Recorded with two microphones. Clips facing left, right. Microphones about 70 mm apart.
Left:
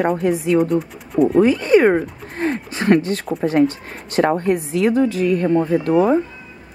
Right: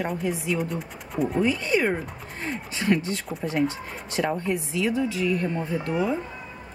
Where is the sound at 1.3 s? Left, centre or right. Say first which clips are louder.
Left 10 dB; left.